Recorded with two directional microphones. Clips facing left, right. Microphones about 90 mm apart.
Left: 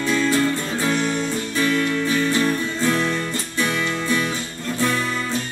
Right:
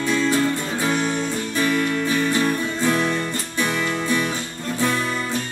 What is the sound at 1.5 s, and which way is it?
Music, 15° right (ahead or behind).